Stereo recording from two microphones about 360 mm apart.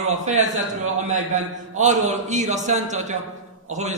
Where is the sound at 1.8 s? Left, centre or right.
Centre.